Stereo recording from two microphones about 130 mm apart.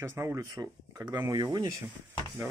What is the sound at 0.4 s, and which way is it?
Speech, 30° right (ahead or behind).